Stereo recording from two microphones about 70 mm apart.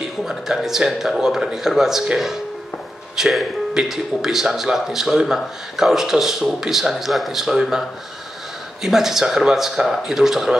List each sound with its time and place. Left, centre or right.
0.0 s speech: centre
8.8 s speech: centre